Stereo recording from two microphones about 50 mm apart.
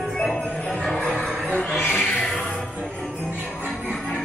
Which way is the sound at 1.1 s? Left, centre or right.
Left.